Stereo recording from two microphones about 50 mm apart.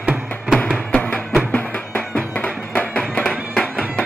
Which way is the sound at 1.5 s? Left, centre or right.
Left.